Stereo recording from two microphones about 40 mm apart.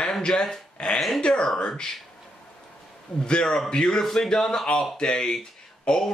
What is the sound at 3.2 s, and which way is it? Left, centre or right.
Speech, centre.